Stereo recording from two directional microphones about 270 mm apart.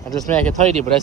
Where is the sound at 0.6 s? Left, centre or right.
Right.